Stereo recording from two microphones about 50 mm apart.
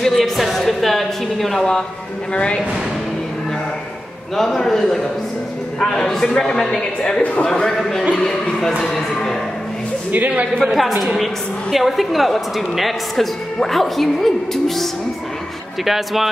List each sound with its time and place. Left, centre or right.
0.0 s speech: centre; by 2.6 s left
4.4 s a man's voice: centre
10.1 s a man's voice: right
10.6 s a woman's voice: centre